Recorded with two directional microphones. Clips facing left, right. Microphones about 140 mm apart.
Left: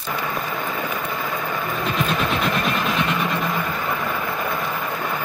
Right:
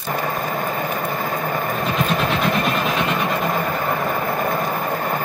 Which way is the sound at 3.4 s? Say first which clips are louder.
Right 3 dB; 45° right (ahead or behind).